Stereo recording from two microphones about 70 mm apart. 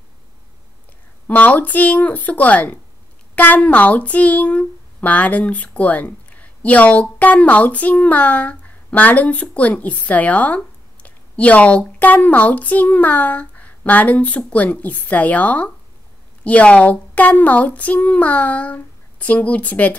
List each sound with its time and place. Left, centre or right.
1.2 s speech: left